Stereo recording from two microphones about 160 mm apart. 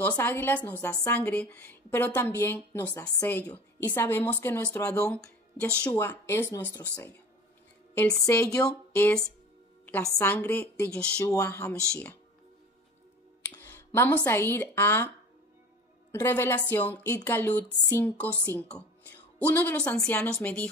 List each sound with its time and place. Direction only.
0.2 s a woman's voice: 10° left (ahead or behind)
13.6 s speech: 10° left (ahead or behind)
16.1 s a woman's voice: 15° left (ahead or behind)
17.6 s a sound: 25° left (ahead or behind)
18.3 s a woman's voice: 20° left (ahead or behind)